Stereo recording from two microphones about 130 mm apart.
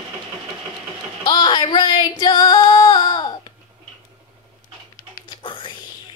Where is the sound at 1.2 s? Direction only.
35° left (ahead or behind).